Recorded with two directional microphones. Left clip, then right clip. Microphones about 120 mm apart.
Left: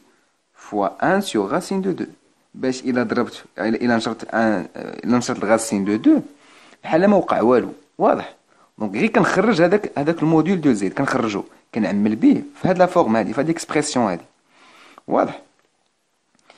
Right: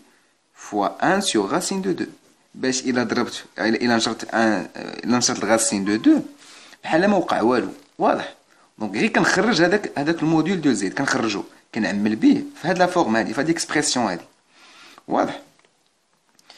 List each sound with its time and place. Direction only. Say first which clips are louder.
0.6 s speech: left 1 dB; 35° left (ahead or behind)